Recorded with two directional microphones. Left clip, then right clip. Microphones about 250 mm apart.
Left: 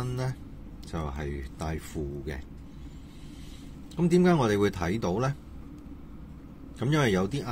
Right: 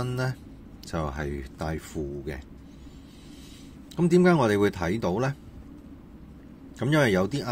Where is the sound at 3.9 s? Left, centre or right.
Centre.